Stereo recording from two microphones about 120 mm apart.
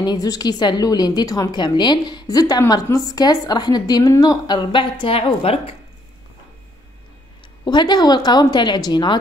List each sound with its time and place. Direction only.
0.0 s a woman's voice: 35° left (ahead or behind); by 5.8 s 50° left (ahead or behind)
7.6 s a woman's voice: 35° left (ahead or behind)